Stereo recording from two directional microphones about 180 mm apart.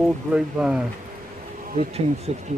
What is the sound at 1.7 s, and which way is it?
Speech, 35° right (ahead or behind).